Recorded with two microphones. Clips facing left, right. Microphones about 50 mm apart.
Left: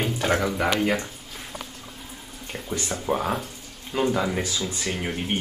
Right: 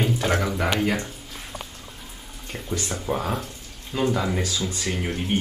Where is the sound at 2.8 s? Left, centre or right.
Centre.